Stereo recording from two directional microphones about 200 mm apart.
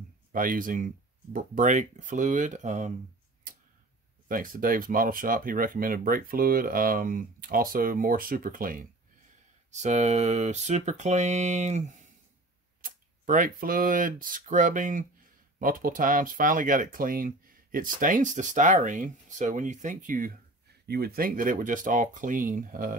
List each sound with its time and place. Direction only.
0.3 s speech: 45° right (ahead or behind)
4.3 s speech: 45° right (ahead or behind)